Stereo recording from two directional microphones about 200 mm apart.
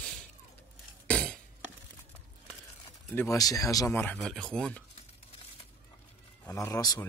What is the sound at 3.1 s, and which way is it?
Speech, 15° left (ahead or behind).